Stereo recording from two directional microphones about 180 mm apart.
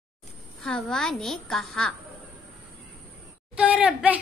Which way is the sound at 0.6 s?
5° left (ahead or behind).